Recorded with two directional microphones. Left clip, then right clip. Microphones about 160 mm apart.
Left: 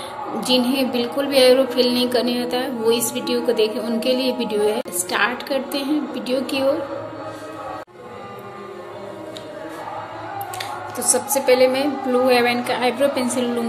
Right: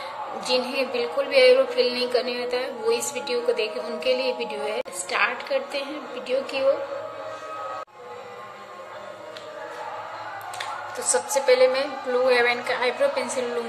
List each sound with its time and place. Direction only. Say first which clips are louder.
0.4 s a woman's voice: left 5 dB; 10° right (ahead or behind)
10.6 s a woman's voice: left 3 dB; 15° right (ahead or behind)